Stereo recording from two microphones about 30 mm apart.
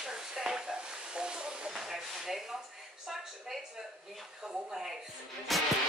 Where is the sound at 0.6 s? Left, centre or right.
Right.